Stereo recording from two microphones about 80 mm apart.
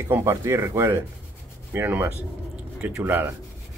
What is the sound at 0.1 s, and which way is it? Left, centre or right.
Speech, right.